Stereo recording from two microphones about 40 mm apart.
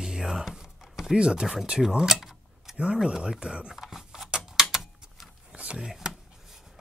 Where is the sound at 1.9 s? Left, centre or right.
Centre.